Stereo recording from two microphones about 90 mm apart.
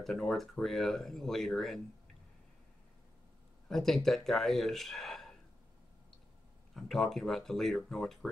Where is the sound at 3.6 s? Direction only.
5° left (ahead or behind).